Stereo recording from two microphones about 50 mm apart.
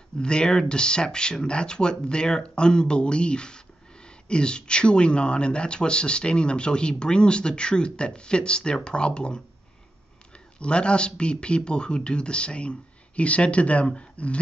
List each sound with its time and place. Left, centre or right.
0.2 s speech: centre